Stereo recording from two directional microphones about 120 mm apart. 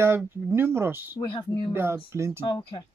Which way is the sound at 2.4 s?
40° left (ahead or behind).